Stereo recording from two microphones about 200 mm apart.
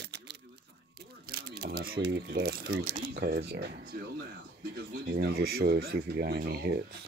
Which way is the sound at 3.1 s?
50° right (ahead or behind).